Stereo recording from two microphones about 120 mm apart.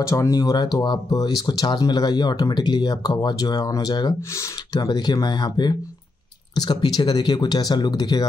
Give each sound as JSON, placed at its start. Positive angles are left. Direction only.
{"t": 0.0, "sound": "speech", "side_deg": 25}